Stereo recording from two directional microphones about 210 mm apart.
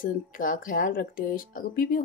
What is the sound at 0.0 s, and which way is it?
Speech, 40° left (ahead or behind).